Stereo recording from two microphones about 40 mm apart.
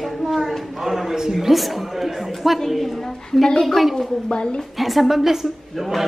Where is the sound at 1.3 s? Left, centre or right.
Centre.